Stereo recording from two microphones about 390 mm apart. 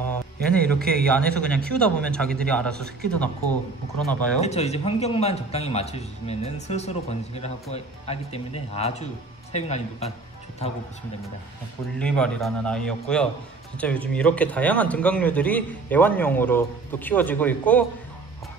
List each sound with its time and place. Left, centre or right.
0.5 s a man's voice: centre
4.4 s a man's voice: centre
12.0 s a man's voice: centre